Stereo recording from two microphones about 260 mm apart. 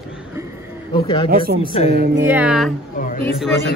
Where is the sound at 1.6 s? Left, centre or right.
Left.